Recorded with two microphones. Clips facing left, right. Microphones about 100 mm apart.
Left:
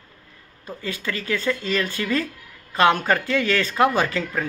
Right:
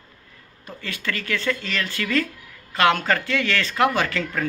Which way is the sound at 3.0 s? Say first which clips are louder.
Left 1 dB; 15° left (ahead or behind).